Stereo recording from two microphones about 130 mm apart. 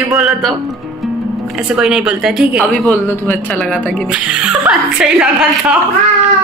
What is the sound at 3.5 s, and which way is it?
Speech, 5° left (ahead or behind).